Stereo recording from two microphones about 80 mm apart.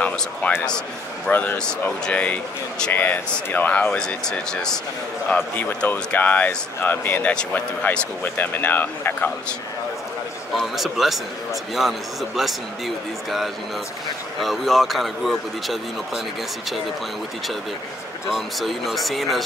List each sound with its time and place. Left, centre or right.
0.4 s a man's voice: centre
1.6 s a man's voice: centre
5.3 s speech: left
10.5 s a man's voice: centre
18.3 s a man's voice: centre